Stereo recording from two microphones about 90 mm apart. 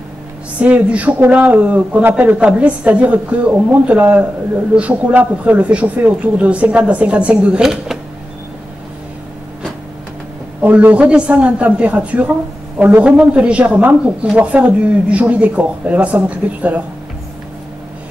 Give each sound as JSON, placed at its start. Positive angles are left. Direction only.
{"t": 0.6, "sound": "a man's voice", "side_deg": -15}
{"t": 10.6, "sound": "a man's voice", "side_deg": -15}